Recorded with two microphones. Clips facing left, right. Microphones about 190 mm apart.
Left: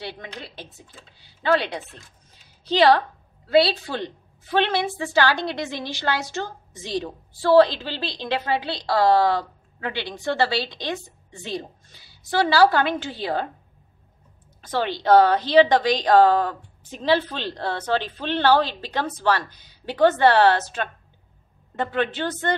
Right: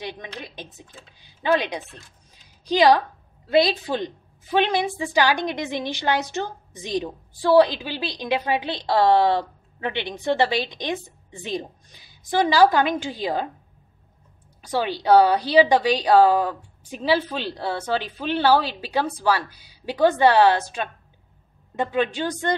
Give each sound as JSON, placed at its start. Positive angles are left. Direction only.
{"t": 0.0, "sound": "a woman's voice", "side_deg": -15}
{"t": 14.6, "sound": "a woman's voice", "side_deg": -10}